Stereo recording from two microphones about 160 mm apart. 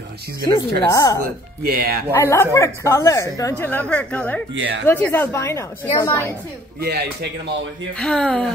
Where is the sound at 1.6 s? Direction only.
65° right (ahead or behind).